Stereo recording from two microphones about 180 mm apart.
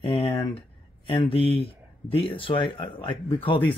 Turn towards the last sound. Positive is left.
turn(degrees=30)  # may be behind; listen again after turning